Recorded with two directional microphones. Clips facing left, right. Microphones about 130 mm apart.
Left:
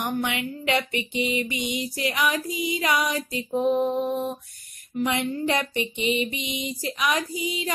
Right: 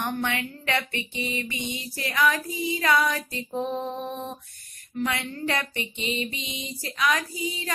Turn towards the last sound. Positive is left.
turn(degrees=15)  # may be behind; listen again after turning